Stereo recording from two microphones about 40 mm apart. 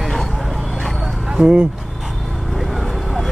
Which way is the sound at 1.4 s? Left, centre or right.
Right.